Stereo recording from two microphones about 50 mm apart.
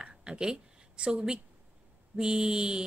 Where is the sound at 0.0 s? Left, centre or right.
Centre.